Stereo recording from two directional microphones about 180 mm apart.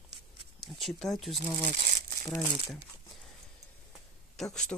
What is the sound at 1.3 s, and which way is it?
Speech, 50° right (ahead or behind).